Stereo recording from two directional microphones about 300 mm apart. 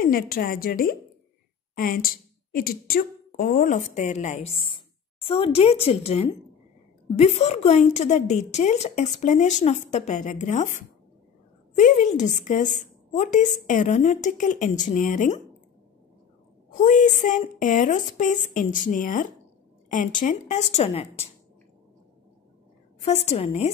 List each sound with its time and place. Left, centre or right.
0.0 s a woman's voice: left
16.7 s a woman's voice: left
23.0 s a woman's voice: left